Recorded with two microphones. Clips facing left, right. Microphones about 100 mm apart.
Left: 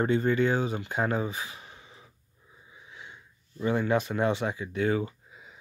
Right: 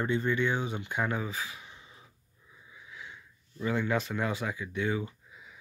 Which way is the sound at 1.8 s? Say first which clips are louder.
Left 2 dB; 85° left.